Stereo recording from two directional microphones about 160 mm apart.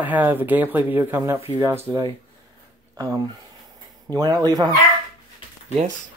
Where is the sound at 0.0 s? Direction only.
10° right (ahead or behind).